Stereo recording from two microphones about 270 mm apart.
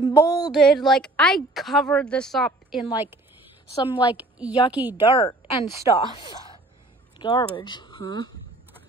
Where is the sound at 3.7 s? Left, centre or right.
Centre.